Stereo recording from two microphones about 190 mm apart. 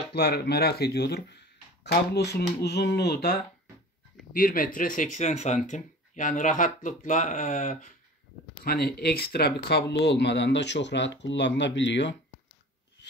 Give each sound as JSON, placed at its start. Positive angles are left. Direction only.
{"t": 0.1, "sound": "speech", "side_deg": 60}
{"t": 8.6, "sound": "speech", "side_deg": 55}